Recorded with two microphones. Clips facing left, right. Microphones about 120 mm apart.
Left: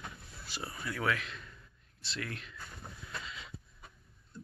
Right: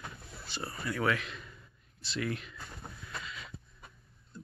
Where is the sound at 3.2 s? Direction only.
25° left (ahead or behind).